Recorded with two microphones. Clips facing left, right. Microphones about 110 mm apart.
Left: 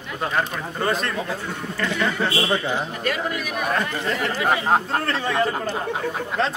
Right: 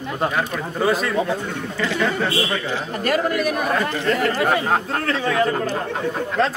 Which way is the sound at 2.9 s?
45° right (ahead or behind).